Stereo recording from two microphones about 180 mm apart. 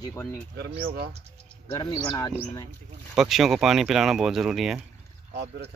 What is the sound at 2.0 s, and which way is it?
Speech, 20° left (ahead or behind).